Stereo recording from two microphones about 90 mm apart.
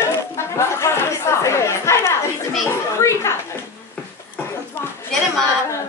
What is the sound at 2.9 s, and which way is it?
Speech, 30° left (ahead or behind).